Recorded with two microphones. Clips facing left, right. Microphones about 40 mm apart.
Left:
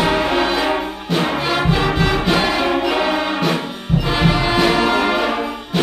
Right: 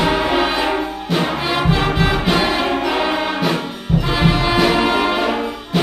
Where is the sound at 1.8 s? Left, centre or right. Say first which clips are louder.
Even; centre.